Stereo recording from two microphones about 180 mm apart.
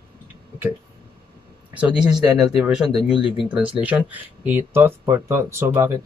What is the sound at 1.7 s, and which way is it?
Speech, 5° right (ahead or behind).